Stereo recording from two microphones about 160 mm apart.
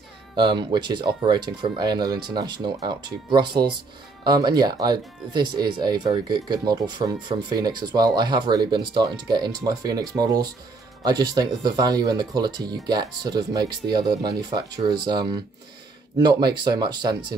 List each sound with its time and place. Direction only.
0.4 s speech: 30° right (ahead or behind)